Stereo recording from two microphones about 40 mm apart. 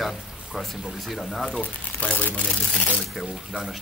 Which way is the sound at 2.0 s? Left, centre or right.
Left.